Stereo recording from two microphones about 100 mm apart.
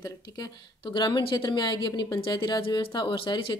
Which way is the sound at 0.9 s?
50° left (ahead or behind).